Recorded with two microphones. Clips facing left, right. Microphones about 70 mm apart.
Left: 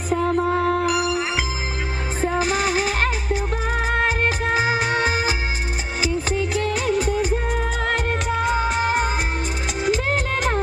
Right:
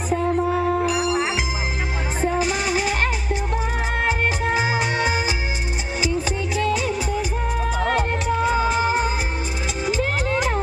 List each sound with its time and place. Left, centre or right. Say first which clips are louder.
0.5 s music: left 1 dB; left
2.3 s music: left 3 dB; left
4.6 s music: left 1 dB; left
6.5 s music: right 1 dB; left
8.4 s music: right 2 dB; left